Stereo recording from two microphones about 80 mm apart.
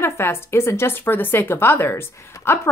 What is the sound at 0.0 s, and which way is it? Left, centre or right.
A woman's voice, left.